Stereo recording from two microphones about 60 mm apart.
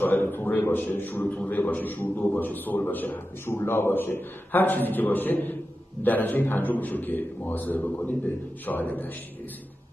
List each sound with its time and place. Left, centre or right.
0.0 s a man's voice: left